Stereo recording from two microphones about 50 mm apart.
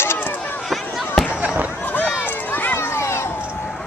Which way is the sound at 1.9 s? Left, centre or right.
Left.